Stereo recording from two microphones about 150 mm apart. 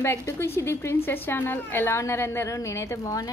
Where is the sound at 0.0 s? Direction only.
15° left (ahead or behind).